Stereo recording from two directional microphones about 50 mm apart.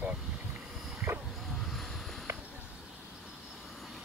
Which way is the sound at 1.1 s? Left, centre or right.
Right.